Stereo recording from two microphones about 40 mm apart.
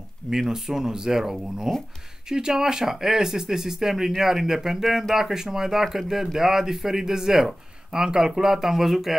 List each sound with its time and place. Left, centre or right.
0.3 s speech: centre